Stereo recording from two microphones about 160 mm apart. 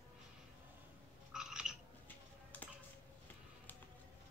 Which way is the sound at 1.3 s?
5° right (ahead or behind).